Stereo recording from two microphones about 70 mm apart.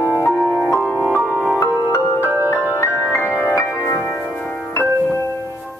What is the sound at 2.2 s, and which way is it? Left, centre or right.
Music, right.